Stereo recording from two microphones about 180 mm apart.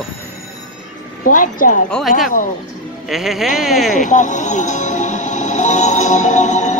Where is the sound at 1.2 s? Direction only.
45° left (ahead or behind).